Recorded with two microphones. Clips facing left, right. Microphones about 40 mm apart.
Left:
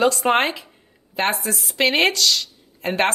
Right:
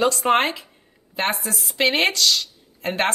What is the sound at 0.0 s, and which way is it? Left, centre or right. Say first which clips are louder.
Speech: left 1 dB; centre.